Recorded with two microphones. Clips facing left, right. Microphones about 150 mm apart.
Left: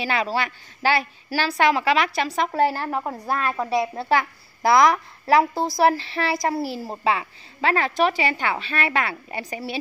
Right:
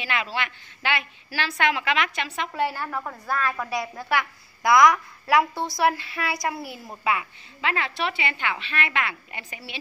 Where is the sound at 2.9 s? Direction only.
25° left (ahead or behind).